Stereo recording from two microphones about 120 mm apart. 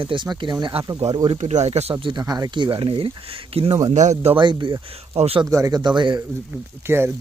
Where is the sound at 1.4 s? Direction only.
70° right (ahead or behind); by 3.7 s 50° right (ahead or behind).